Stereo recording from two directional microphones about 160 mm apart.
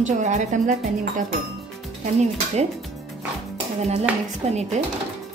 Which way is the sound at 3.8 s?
45° right (ahead or behind).